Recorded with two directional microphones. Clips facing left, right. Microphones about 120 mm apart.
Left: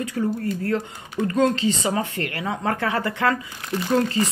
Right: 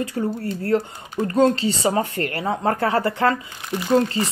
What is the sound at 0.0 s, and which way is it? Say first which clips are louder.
Speech: even; 30° right (ahead or behind).